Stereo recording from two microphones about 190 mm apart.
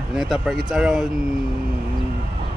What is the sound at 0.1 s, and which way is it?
Speech, centre (ahead or behind).